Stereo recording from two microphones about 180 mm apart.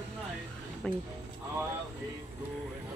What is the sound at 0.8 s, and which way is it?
Speech, 5° left (ahead or behind).